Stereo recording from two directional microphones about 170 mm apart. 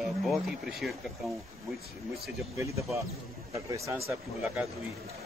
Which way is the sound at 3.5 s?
20° right (ahead or behind).